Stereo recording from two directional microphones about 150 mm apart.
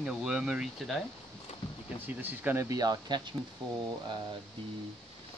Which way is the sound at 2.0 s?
10° right (ahead or behind).